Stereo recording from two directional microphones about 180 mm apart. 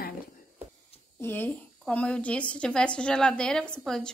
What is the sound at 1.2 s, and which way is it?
A woman's voice, 10° left (ahead or behind).